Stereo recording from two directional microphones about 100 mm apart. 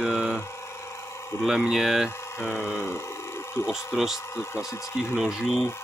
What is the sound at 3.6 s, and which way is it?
Speech, 5° right (ahead or behind).